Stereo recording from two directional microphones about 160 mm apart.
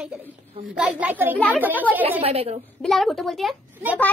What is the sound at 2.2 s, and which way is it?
Speech, 40° right (ahead or behind).